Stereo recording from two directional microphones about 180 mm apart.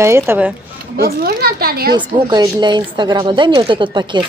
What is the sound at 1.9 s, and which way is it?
A woman's voice, 25° right (ahead or behind).